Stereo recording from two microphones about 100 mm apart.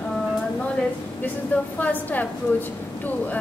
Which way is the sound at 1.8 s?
15° left (ahead or behind).